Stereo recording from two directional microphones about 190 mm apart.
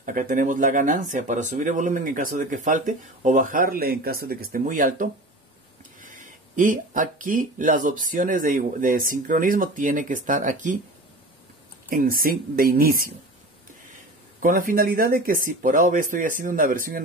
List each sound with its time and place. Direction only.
0.0 s speech: 45° right (ahead or behind)
11.9 s speech: 50° right (ahead or behind)
14.4 s speech: 45° right (ahead or behind)